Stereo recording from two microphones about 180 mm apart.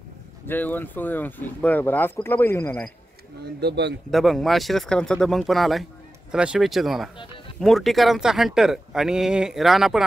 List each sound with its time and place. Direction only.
0.5 s speech: 10° left (ahead or behind)
3.4 s speech: 65° right (ahead or behind)
4.1 s speech: centre (ahead or behind)